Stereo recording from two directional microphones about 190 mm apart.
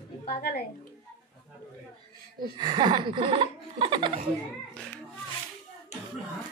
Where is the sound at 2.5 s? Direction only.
25° right (ahead or behind).